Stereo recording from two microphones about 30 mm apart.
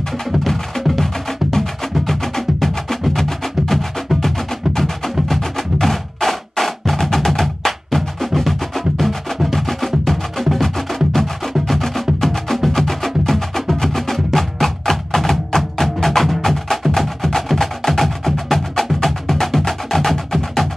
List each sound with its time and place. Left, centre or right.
0.9 s music: centre
6.6 s percussion: centre
8.4 s music: centre
12.8 s wood block: centre
15.1 s music: centre